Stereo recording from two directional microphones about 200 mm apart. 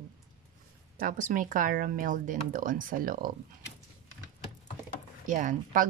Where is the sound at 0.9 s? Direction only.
40° right (ahead or behind).